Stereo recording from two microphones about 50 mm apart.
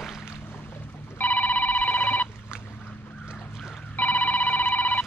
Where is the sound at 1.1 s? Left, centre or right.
Left.